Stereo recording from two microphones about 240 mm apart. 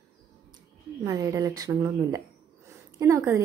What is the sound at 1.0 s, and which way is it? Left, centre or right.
A woman's voice, centre.